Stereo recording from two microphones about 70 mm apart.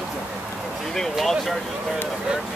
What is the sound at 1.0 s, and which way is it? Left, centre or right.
Speech, centre.